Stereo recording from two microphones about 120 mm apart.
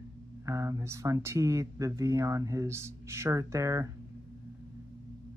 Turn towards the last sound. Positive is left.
turn(degrees=-25)  # may be behind; listen again after turning